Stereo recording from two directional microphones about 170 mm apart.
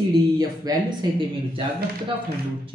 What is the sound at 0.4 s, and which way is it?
Speech, 25° right (ahead or behind).